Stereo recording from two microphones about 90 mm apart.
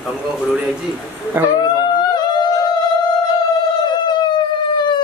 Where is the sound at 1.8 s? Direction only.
50° left (ahead or behind).